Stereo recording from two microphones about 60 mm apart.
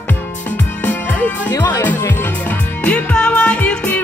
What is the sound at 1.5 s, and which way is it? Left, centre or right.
Music, left.